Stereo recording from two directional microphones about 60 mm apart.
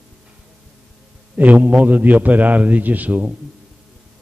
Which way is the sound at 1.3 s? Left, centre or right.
Right.